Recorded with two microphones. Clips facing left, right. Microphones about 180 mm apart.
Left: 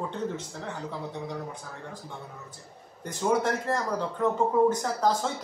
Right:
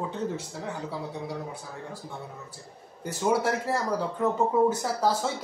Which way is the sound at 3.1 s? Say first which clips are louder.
Even; 5° right (ahead or behind).